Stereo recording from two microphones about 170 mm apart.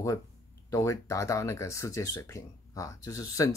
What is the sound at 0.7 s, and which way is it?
Speech, 20° left (ahead or behind).